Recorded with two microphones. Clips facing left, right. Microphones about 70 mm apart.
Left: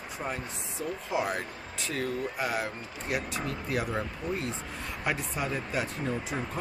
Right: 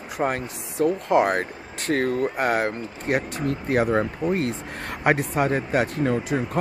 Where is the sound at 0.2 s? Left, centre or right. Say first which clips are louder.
Right 11 dB; right.